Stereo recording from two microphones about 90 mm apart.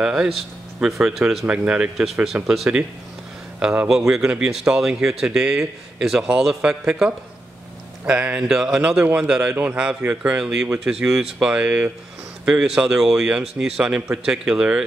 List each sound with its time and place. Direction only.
0.0 s speech: 10° right (ahead or behind)